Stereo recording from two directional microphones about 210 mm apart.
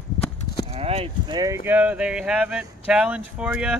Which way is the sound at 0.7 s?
30° right (ahead or behind).